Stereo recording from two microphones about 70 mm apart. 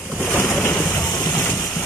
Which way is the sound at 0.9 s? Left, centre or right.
Left.